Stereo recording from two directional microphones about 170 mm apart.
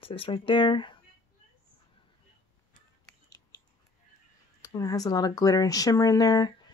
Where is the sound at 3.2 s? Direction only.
20° left (ahead or behind).